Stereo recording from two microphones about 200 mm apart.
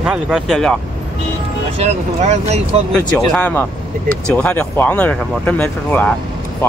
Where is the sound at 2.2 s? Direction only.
35° right (ahead or behind).